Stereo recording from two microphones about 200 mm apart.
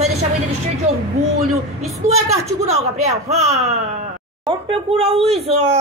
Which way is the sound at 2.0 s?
30° right (ahead or behind).